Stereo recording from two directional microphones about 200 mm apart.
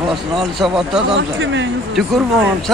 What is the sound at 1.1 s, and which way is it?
Speech, 65° right (ahead or behind).